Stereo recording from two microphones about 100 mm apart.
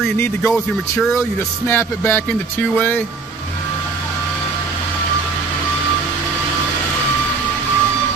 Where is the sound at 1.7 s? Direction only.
25° left (ahead or behind).